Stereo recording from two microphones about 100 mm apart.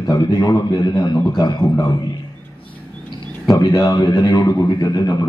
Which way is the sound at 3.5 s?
45° left (ahead or behind).